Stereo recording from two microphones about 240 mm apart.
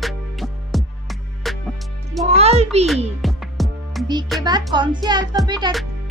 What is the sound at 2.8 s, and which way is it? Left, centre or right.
Music, centre.